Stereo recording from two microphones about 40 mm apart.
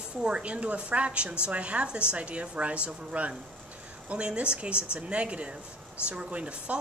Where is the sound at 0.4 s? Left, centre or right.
Right.